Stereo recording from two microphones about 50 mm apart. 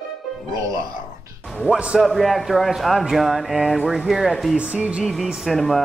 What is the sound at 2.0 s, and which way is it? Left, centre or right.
Speech, centre.